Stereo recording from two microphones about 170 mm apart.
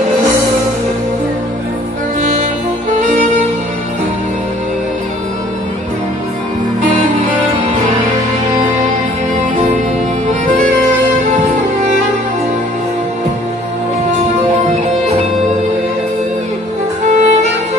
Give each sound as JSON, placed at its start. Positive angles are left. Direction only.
{"t": 17.1, "sound": "music", "side_deg": -40}